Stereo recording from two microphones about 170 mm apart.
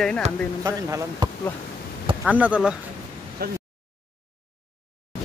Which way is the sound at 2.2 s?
10° right (ahead or behind).